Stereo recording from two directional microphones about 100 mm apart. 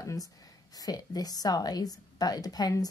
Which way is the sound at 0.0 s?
35° left (ahead or behind).